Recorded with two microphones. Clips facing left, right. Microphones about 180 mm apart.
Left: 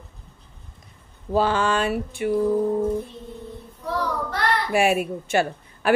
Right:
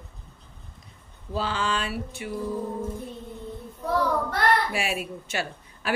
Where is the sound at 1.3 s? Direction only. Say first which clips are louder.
Left 7 dB; 50° left (ahead or behind).